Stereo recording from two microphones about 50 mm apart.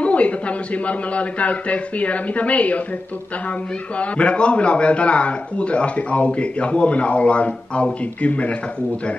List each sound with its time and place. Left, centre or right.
0.0 s a sound: left
0.8 s a man's voice: left
4.0 s a man's voice: left